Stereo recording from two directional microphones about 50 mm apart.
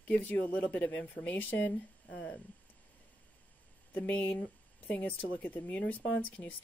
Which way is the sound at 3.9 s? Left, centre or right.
Left.